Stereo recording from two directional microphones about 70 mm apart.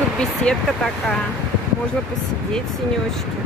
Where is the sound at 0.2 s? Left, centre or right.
Centre.